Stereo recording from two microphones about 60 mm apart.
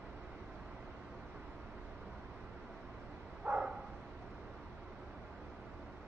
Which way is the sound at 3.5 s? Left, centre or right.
Right.